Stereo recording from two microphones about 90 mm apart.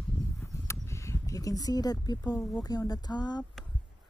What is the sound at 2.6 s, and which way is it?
Speech, 45° left (ahead or behind).